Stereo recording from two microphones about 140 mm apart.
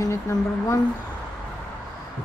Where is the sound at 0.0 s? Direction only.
20° left (ahead or behind).